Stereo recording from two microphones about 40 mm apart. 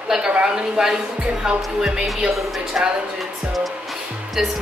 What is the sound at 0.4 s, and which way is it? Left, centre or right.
Speech, centre.